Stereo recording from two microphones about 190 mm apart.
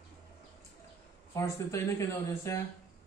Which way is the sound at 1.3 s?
15° left (ahead or behind).